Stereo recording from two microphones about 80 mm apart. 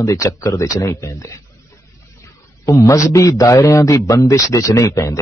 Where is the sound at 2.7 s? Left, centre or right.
Left.